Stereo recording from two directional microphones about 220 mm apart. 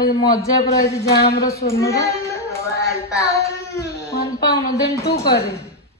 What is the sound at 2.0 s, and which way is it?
Speech, 15° left (ahead or behind).